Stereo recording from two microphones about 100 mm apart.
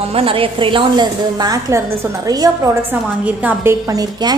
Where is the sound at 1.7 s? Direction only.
25° right (ahead or behind).